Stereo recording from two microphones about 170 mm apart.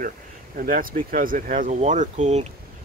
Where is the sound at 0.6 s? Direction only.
55° right (ahead or behind).